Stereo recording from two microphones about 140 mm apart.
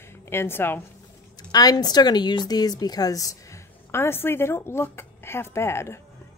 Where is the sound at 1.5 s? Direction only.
30° left (ahead or behind).